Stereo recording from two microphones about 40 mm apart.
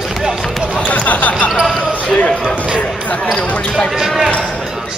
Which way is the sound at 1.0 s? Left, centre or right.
Left.